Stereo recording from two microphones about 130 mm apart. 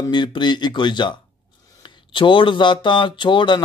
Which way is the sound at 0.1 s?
35° left (ahead or behind).